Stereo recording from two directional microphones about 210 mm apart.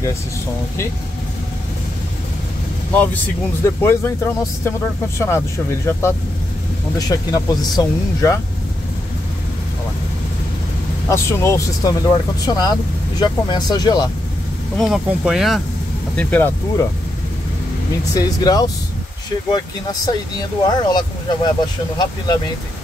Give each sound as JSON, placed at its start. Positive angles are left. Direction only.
{"t": 2.9, "sound": "speech", "side_deg": 10}
{"t": 5.2, "sound": "speech", "side_deg": 10}
{"t": 11.1, "sound": "speech", "side_deg": 15}
{"t": 14.8, "sound": "speech", "side_deg": 0}
{"t": 18.1, "sound": "speech", "side_deg": 20}